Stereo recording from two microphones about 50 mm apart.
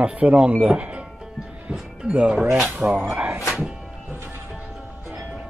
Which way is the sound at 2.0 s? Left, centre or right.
Right.